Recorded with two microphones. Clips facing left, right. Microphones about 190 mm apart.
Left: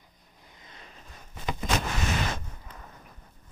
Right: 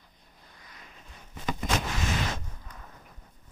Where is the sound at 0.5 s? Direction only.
25° left (ahead or behind).